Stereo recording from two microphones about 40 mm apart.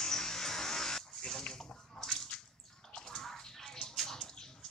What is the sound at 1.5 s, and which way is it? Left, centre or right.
Bathtub, centre.